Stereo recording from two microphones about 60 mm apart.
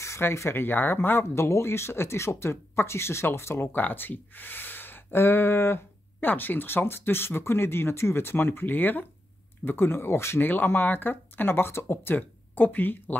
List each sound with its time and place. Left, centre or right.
0.0 s speech: left
3.7 s speech: left
10.4 s speech: left